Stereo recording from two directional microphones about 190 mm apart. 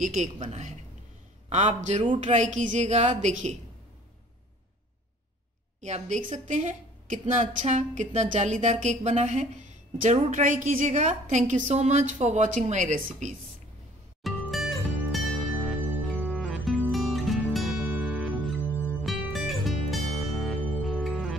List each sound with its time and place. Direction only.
0.0 s a woman's voice: 40° right (ahead or behind)
5.8 s a woman's voice: 40° right (ahead or behind)
14.2 s music: centre (ahead or behind)
18.6 s music: 10° left (ahead or behind)